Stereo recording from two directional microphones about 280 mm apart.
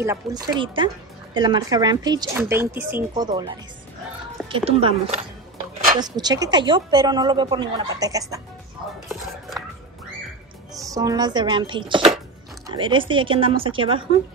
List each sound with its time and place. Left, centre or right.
0.0 s speech: centre
4.5 s speech: centre
10.8 s speech: centre